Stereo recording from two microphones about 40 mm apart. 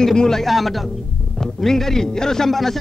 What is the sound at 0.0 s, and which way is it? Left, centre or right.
Speech, centre.